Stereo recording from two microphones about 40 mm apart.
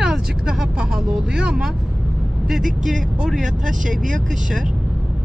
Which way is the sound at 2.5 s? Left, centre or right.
Centre.